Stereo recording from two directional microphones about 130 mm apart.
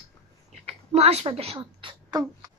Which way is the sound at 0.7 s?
55° right (ahead or behind).